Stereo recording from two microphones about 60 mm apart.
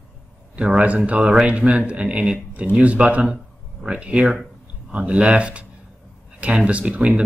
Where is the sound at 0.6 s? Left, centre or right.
Right.